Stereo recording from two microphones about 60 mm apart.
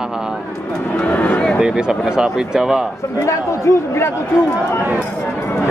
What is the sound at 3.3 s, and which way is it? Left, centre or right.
Speech, left.